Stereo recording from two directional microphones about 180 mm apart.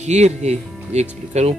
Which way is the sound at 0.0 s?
40° right (ahead or behind).